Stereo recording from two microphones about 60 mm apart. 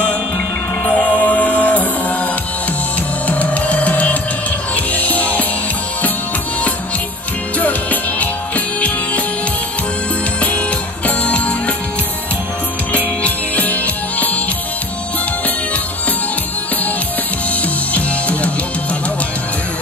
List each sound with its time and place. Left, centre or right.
0.8 s music: left
3.3 s music: left
7.5 s music: left
11.1 s music: left
12.9 s music: left
17.9 s music: left